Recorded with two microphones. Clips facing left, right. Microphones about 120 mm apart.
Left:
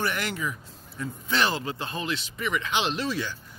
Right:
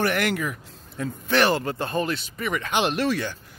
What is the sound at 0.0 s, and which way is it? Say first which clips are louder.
Speech: right 6 dB; 60° right (ahead or behind).